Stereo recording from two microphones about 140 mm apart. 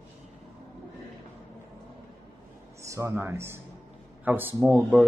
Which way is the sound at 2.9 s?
20° right (ahead or behind).